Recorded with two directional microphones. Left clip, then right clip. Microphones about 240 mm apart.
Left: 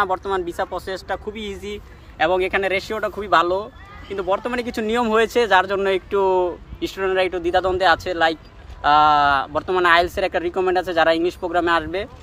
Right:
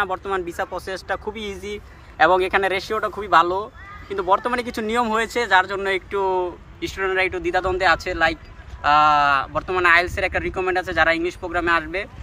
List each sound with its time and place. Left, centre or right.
0.0 s speech: centre
1.3 s speech: centre
5.5 s speech: left